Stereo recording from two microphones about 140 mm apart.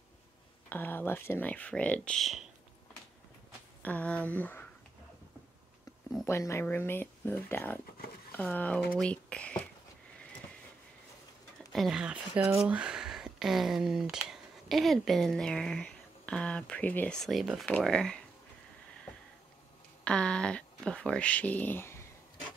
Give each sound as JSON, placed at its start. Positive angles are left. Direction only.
{"t": 0.7, "sound": "speech", "side_deg": 15}
{"t": 3.8, "sound": "speech", "side_deg": 10}
{"t": 6.2, "sound": "speech", "side_deg": 20}
{"t": 11.7, "sound": "speech", "side_deg": 0}
{"t": 20.1, "sound": "speech", "side_deg": 5}